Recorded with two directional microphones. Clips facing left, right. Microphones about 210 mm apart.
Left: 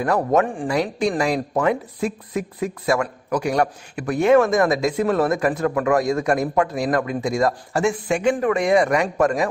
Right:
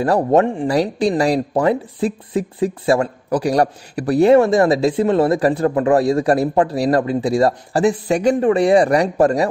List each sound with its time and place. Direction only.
0.0 s speech: 30° right (ahead or behind)